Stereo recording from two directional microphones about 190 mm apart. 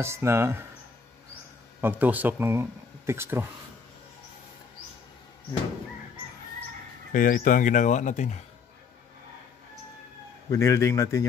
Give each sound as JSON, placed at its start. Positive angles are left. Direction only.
{"t": 0.0, "sound": "speech", "side_deg": -15}
{"t": 1.8, "sound": "speech", "side_deg": -10}
{"t": 7.1, "sound": "speech", "side_deg": 45}
{"t": 10.5, "sound": "a man's voice", "side_deg": 15}